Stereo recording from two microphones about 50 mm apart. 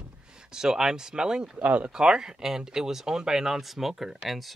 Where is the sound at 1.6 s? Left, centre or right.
Right.